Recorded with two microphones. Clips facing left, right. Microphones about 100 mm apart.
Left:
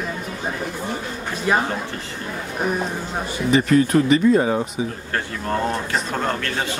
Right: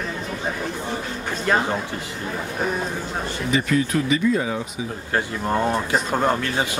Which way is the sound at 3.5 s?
40° left (ahead or behind).